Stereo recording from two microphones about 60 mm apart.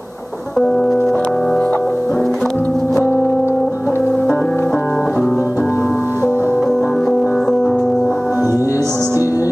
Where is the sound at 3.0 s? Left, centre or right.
Left.